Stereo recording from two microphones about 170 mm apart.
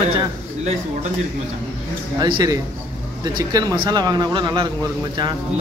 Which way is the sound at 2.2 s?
25° right (ahead or behind).